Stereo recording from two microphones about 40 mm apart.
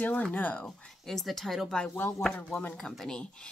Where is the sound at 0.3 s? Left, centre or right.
Left.